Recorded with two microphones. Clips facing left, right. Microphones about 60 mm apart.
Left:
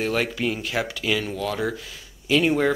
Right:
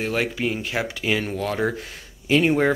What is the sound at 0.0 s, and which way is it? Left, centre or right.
Speech, centre.